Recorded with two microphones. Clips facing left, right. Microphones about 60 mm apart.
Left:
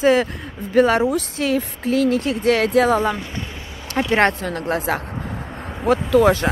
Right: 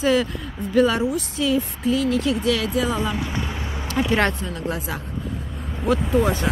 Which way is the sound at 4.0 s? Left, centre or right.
Left.